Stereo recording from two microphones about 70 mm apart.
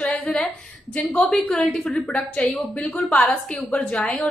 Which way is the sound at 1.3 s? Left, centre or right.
Centre.